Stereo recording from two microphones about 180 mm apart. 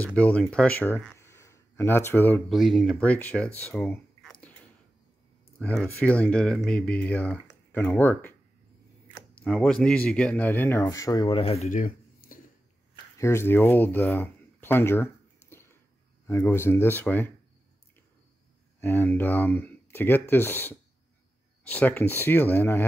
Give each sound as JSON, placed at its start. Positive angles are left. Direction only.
{"t": 0.0, "sound": "speech", "side_deg": 5}
{"t": 2.5, "sound": "speech", "side_deg": 0}
{"t": 5.6, "sound": "speech", "side_deg": 5}
{"t": 11.8, "sound": "a sound", "side_deg": 50}
{"t": 13.2, "sound": "speech", "side_deg": 15}
{"t": 15.5, "sound": "a sound", "side_deg": 15}
{"t": 16.3, "sound": "speech", "side_deg": 15}
{"t": 18.8, "sound": "speech", "side_deg": 10}